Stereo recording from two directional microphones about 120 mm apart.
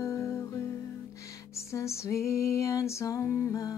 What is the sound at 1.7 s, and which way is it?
Music, 25° left (ahead or behind).